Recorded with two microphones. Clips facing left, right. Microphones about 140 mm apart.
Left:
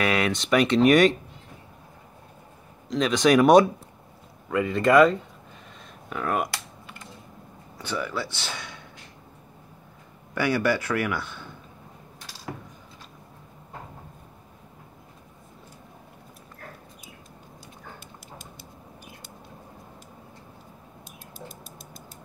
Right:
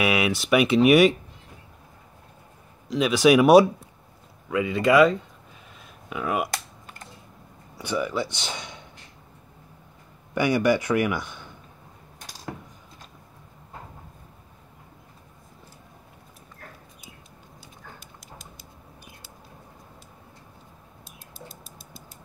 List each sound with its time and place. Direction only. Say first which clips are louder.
0.0 s speech: right 1 dB; 10° right (ahead or behind)
2.9 s speech: right 2 dB; 5° right (ahead or behind)
7.7 s speech: right 3 dB; 15° right (ahead or behind)
10.3 s speech: right 3 dB; 15° right (ahead or behind)